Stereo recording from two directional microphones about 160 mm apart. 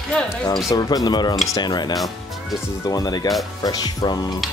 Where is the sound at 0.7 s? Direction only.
25° left (ahead or behind).